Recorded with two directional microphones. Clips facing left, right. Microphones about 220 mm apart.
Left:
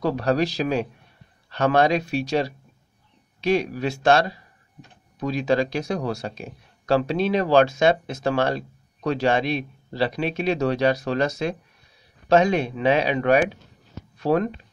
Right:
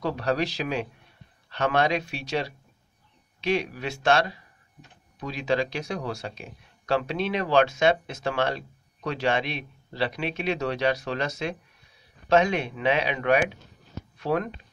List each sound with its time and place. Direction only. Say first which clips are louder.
0.0 s speech: left 5 dB; 40° left (ahead or behind)